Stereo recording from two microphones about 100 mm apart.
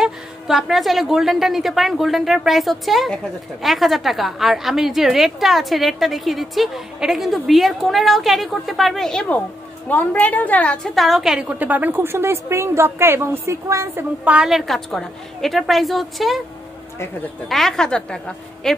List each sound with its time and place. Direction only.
0.0 s a woman's voice: 5° right (ahead or behind)
9.8 s a woman's voice: 15° left (ahead or behind)
11.0 s a woman's voice: centre (ahead or behind); by 14.0 s 30° right (ahead or behind)
14.2 s a woman's voice: 10° right (ahead or behind)
17.5 s a woman's voice: centre (ahead or behind)